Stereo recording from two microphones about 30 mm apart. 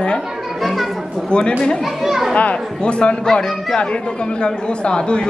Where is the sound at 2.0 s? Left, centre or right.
Centre.